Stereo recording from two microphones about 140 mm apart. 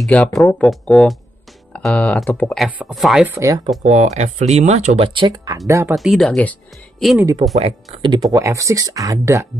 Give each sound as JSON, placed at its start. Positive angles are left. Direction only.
{"t": 0.0, "sound": "speech", "side_deg": 5}
{"t": 3.3, "sound": "speech", "side_deg": -20}
{"t": 3.8, "sound": "speech", "side_deg": -55}
{"t": 5.9, "sound": "speech", "side_deg": 0}
{"t": 7.5, "sound": "speech", "side_deg": -50}
{"t": 8.0, "sound": "speech", "side_deg": -30}